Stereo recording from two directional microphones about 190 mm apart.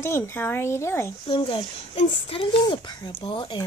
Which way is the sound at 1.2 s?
25° left (ahead or behind).